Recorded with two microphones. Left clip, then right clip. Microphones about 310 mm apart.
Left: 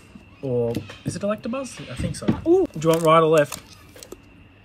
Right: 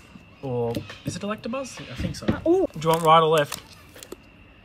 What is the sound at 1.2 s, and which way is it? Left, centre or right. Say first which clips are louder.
Speech: left 4 dB; centre.